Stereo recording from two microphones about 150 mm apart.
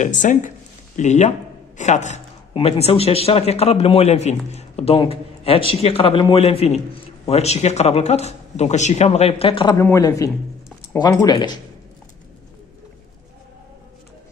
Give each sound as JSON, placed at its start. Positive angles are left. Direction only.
{"t": 0.0, "sound": "speech", "side_deg": 55}
{"t": 2.5, "sound": "a man's voice", "side_deg": 40}
{"t": 9.8, "sound": "a woman's voice", "side_deg": 20}